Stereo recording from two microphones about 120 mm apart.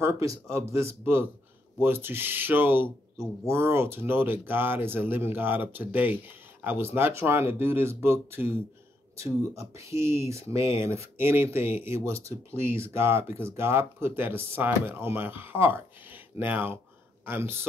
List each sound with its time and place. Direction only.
0.0 s speech: 25° right (ahead or behind)